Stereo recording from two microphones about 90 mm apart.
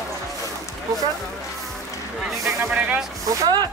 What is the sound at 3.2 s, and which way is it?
Speech, 45° right (ahead or behind).